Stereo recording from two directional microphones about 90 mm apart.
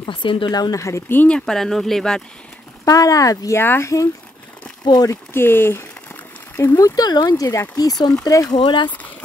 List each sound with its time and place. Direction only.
0.0 s a woman's voice: 65° left (ahead or behind)
0.5 s speech: 45° left (ahead or behind)
0.7 s speech: 35° left (ahead or behind)
1.3 s speech: 5° left (ahead or behind)
2.8 s speech: 40° left (ahead or behind)
3.5 s speech: 25° left (ahead or behind)
4.8 s speech: 45° left (ahead or behind)
5.1 s speech: 25° left (ahead or behind)
6.8 s speech: 45° left (ahead or behind)
8.6 s a woman's voice: 60° left (ahead or behind)